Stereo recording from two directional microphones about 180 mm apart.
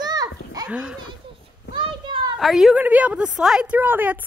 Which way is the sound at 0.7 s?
5° right (ahead or behind).